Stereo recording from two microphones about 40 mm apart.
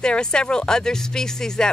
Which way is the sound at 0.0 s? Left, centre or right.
Left.